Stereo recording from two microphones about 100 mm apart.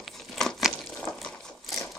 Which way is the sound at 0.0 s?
Centre (ahead or behind).